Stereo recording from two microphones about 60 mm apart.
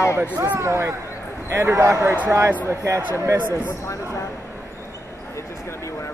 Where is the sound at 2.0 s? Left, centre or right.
Right.